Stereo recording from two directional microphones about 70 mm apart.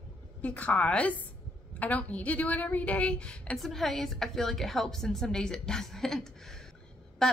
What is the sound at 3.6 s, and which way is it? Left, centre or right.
A woman's voice, centre.